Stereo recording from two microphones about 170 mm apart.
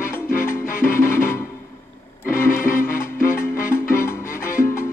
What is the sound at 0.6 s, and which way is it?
Music, 55° left (ahead or behind).